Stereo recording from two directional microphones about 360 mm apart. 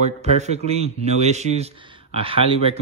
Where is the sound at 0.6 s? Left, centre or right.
Centre.